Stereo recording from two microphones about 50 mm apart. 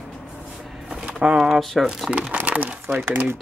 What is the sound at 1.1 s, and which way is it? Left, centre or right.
Speech, centre.